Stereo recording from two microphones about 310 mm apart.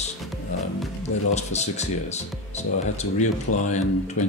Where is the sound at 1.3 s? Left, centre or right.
Left.